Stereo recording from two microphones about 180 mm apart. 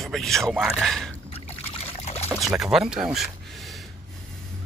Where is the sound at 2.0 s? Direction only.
35° left (ahead or behind).